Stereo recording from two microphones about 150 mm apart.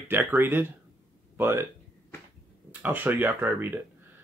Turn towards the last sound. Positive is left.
turn(degrees=-15)  # may be behind; listen again after turning